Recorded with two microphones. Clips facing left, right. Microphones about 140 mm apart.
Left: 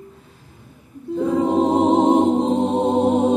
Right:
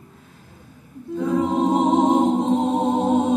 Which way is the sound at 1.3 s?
25° left (ahead or behind).